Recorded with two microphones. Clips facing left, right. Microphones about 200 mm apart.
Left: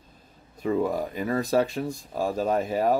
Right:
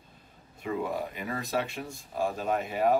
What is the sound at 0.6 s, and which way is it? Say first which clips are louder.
Speech: left 6 dB; 40° left (ahead or behind).